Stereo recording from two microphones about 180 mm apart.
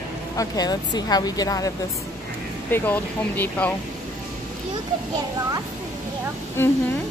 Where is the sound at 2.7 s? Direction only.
10° left (ahead or behind).